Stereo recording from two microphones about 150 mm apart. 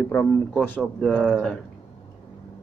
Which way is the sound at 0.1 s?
20° left (ahead or behind).